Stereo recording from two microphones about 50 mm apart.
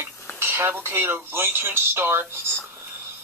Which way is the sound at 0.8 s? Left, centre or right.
Right.